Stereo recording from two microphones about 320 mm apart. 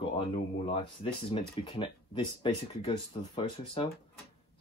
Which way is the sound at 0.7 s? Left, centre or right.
Centre.